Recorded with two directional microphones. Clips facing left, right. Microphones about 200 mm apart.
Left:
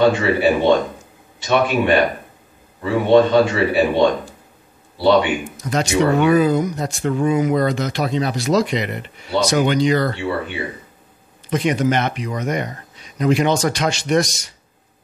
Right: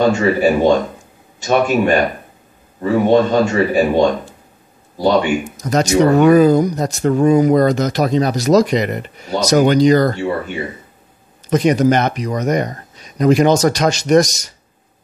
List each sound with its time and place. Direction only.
0.0 s speech: 45° right (ahead or behind)